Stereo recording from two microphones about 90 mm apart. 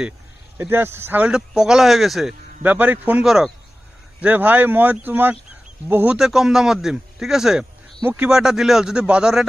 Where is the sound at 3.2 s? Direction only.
5° right (ahead or behind).